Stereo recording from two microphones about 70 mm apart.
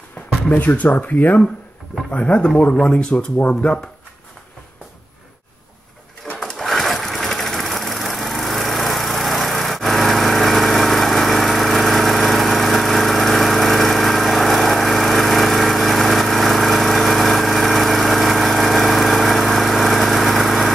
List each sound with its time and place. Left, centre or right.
0.5 s speech: left
6.4 s sewing machine: centre